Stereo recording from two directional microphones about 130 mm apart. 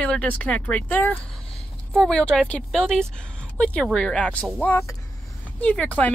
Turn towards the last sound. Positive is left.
turn(degrees=10)  # may be behind; listen again after turning